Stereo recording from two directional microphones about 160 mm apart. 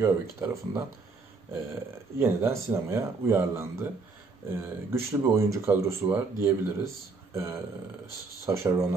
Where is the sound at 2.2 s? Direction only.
15° right (ahead or behind).